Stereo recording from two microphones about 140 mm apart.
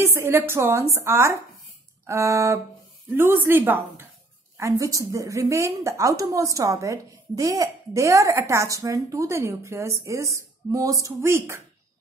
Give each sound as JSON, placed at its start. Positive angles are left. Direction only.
{"t": 0.0, "sound": "a woman's voice", "side_deg": -20}